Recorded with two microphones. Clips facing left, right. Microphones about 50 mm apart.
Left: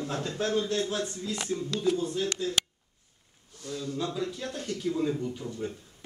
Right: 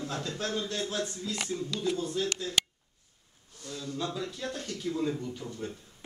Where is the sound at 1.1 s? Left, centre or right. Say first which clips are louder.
Left 2 dB; centre.